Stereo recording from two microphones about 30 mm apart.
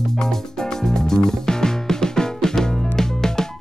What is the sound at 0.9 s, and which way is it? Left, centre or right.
Music, centre.